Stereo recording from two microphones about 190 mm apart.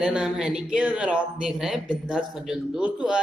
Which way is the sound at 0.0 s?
5° right (ahead or behind).